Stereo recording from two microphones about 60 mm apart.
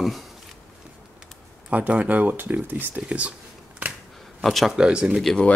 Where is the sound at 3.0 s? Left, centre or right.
Right.